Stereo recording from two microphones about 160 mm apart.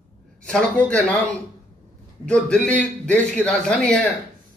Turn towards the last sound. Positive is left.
turn(degrees=5)  # may be behind; listen again after turning